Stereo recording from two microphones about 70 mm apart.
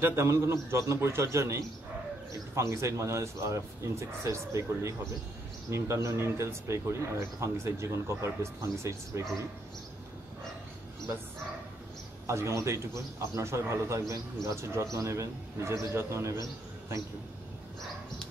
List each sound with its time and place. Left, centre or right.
0.0 s a man's voice: right
12.3 s a man's voice: right